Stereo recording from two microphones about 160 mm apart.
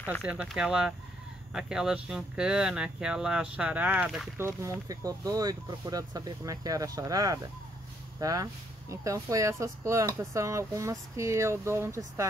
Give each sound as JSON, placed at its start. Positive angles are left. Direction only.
{"t": 0.2, "sound": "speech", "side_deg": -5}
{"t": 4.4, "sound": "speech", "side_deg": -15}